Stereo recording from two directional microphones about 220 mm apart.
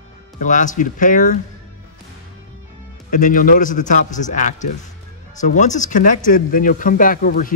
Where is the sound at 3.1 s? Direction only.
35° left (ahead or behind).